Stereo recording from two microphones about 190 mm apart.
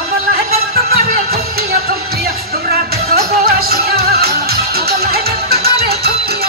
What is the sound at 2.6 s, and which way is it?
Music, 55° right (ahead or behind).